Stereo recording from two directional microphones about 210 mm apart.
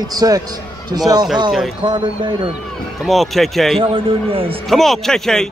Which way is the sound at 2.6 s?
Centre (ahead or behind).